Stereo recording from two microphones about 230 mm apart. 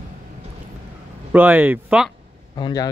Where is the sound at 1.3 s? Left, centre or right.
Centre.